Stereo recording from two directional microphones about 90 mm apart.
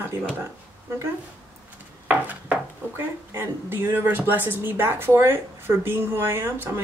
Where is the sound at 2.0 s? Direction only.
15° right (ahead or behind).